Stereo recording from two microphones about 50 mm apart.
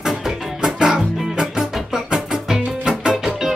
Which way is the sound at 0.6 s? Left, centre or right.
Centre.